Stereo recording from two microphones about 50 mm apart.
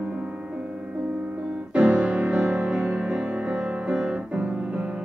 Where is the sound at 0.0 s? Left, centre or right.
Right.